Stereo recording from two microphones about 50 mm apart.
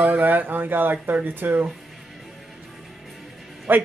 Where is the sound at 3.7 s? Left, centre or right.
Right.